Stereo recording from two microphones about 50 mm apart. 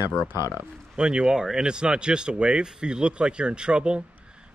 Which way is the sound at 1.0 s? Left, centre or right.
Centre.